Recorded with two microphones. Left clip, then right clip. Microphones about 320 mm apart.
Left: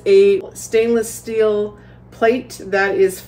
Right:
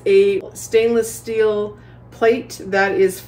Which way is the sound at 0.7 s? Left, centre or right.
Centre.